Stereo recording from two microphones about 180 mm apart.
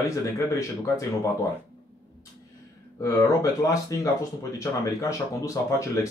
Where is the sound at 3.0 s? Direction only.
20° left (ahead or behind).